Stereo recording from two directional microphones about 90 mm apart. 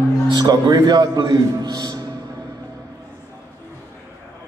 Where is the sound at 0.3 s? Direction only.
45° right (ahead or behind).